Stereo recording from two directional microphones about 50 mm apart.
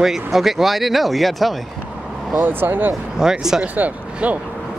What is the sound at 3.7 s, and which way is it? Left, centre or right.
Speech, right.